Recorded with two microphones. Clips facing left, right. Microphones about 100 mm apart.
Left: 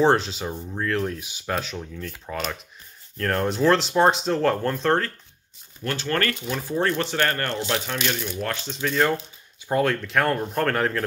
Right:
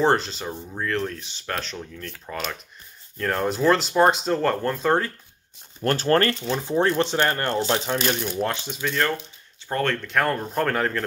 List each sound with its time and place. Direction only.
0.0 s speech: centre (ahead or behind)
5.8 s speech: 40° right (ahead or behind)
6.5 s speech: 20° right (ahead or behind)
8.6 s speech: 10° right (ahead or behind)
9.7 s speech: 5° left (ahead or behind)